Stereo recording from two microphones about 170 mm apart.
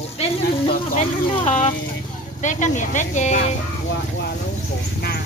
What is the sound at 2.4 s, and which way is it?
Speech, 45° left (ahead or behind).